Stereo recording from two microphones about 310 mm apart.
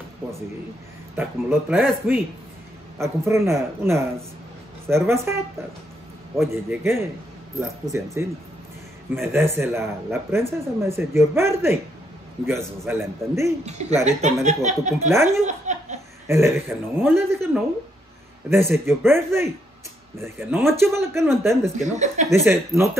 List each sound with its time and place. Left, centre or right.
1.1 s speech: centre
13.7 s speech: right
15.0 s speech: centre
15.4 s laughter: right
16.3 s speech: centre
18.5 s speech: centre
21.7 s speech: right
22.3 s speech: centre